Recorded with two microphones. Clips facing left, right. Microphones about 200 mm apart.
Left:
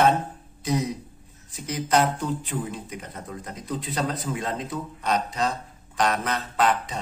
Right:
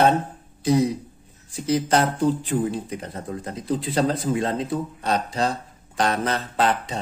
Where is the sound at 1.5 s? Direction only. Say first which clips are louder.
Right 4 dB; 30° right (ahead or behind).